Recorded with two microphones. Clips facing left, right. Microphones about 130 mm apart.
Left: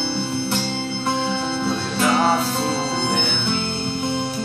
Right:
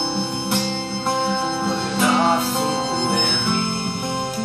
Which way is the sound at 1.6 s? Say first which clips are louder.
Even; 20° right (ahead or behind).